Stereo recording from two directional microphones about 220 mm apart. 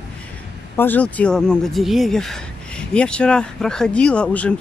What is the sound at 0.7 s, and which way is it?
Speech, 10° left (ahead or behind).